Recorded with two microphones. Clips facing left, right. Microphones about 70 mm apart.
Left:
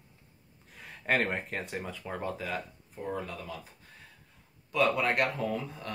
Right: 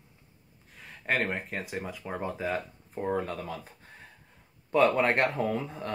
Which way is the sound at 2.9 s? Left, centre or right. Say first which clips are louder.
Right 6 dB; right.